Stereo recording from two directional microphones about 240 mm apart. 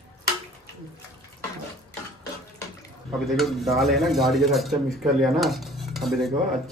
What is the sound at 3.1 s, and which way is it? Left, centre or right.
Speech, centre.